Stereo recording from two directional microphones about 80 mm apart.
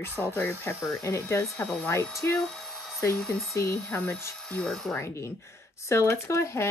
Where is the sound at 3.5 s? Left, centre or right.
Left.